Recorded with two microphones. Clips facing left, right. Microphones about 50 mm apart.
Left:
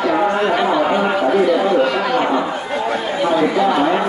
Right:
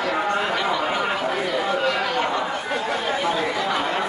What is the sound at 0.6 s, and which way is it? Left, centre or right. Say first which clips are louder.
Chatter: left 7 dB; centre.